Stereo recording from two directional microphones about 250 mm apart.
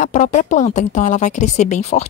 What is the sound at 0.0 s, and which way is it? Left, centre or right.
A woman's voice, left.